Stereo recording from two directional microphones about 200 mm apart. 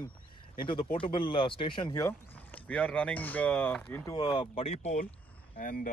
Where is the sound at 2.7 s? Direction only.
5° left (ahead or behind).